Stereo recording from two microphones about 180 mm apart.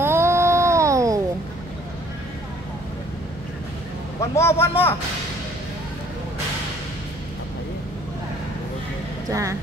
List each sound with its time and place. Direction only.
0.0 s a sound: 15° right (ahead or behind)
4.2 s a man's voice: 15° left (ahead or behind)
9.3 s speech: 15° right (ahead or behind)